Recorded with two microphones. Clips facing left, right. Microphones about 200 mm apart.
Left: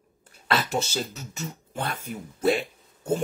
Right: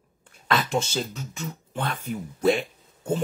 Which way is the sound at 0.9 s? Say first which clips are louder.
Right 2 dB; 40° left (ahead or behind).